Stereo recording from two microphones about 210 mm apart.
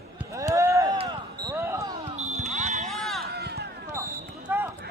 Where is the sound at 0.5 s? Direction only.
15° right (ahead or behind).